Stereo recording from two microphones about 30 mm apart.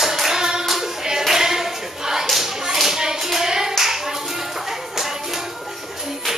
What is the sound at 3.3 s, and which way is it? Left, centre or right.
Hands, centre.